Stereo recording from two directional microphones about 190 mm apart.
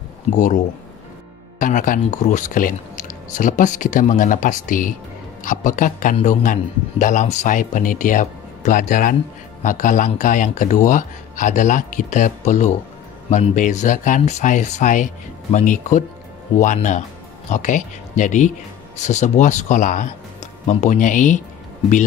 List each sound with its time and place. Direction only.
1.6 s speech: 45° left (ahead or behind)